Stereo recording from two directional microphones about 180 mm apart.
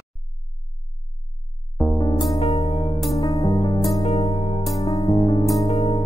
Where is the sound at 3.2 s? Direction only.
20° left (ahead or behind).